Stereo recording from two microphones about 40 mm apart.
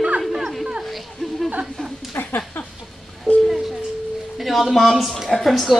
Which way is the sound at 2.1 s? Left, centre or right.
Left.